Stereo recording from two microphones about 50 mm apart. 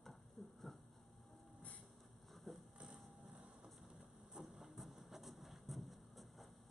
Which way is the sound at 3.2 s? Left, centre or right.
Right.